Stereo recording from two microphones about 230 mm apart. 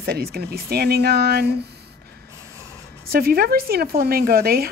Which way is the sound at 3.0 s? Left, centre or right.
Right.